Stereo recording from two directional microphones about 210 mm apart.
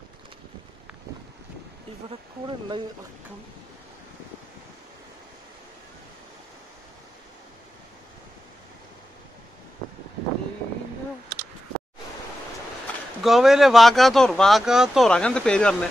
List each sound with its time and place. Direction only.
2.0 s speech: 25° right (ahead or behind)
13.2 s speech: centre (ahead or behind)